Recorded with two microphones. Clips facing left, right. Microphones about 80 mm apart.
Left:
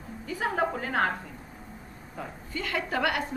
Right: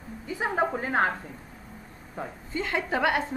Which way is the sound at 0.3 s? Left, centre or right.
Right.